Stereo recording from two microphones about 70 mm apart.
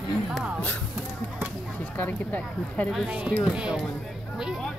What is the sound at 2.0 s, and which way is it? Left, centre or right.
Speech, left.